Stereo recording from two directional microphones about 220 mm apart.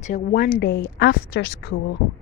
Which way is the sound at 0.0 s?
40° left (ahead or behind).